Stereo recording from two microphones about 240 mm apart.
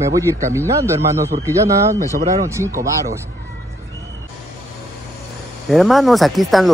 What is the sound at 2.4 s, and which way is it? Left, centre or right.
Speech, centre.